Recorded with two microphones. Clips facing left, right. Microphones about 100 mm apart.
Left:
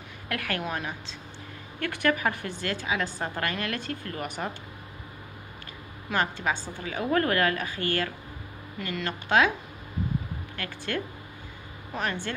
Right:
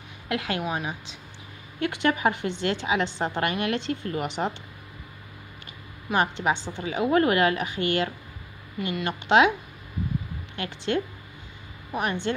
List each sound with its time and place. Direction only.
0.3 s a woman's voice: 20° right (ahead or behind)
6.0 s a woman's voice: 20° right (ahead or behind)
10.5 s a woman's voice: 20° right (ahead or behind)